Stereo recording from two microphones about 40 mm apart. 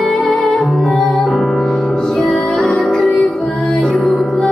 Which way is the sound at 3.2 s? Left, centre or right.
Centre.